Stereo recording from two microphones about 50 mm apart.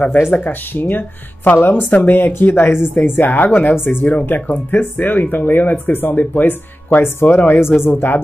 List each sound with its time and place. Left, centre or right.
0.4 s speech: left